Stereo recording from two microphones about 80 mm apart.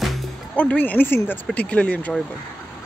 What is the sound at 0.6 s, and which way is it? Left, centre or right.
Speech, centre.